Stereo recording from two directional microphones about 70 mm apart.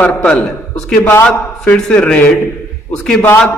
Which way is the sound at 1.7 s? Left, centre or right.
Centre.